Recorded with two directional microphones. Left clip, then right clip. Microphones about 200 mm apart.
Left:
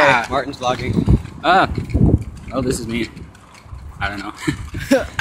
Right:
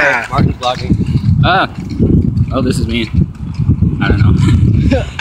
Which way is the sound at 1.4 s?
Centre (ahead or behind).